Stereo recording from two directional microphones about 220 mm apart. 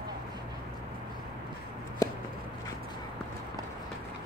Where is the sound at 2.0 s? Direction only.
15° left (ahead or behind).